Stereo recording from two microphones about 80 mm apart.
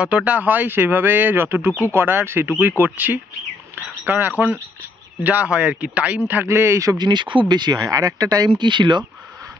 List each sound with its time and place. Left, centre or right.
0.0 s speech: centre
6.4 s a man's voice: right
7.0 s speech: right